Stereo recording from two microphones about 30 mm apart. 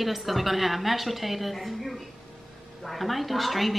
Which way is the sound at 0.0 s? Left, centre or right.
Centre.